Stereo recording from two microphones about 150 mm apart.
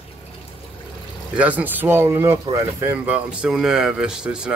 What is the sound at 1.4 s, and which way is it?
Speech, 10° right (ahead or behind).